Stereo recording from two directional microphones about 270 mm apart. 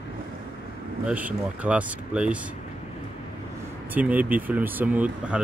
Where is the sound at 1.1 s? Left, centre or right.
Centre.